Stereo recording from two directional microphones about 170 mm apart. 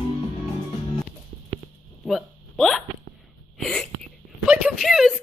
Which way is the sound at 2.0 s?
Centre (ahead or behind).